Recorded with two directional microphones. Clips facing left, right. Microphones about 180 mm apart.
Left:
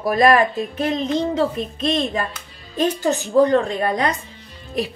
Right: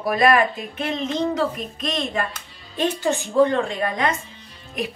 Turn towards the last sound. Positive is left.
turn(degrees=35)  # may be behind; listen again after turning